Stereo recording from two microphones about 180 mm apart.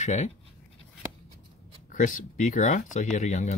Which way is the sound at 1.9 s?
45° left (ahead or behind).